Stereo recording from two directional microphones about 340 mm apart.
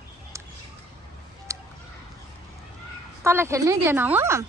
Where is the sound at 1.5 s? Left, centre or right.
Centre.